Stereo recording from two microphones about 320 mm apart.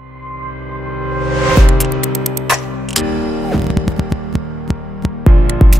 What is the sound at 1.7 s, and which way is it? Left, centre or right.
Music, centre.